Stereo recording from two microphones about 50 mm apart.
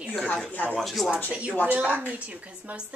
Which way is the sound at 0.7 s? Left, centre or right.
Centre.